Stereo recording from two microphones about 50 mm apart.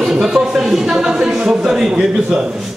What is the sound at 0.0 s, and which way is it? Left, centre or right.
Speech, centre.